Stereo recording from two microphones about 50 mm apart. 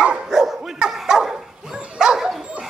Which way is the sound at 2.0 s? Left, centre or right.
Centre.